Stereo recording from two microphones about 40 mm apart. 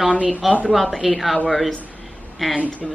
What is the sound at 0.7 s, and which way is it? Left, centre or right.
A woman's voice, centre.